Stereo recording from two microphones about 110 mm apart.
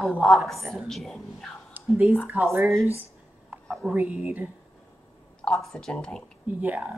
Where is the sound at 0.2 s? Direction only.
5° left (ahead or behind).